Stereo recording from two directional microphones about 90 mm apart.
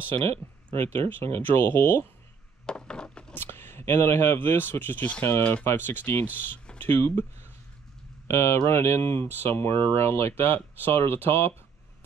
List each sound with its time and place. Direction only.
0.7 s speech: 25° left (ahead or behind)
2.6 s a sound: 10° left (ahead or behind)
3.3 s speech: 25° left (ahead or behind)
8.3 s speech: 30° left (ahead or behind)